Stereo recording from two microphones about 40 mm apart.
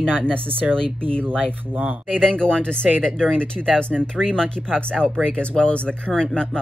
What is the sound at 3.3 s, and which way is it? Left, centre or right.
Speech, left.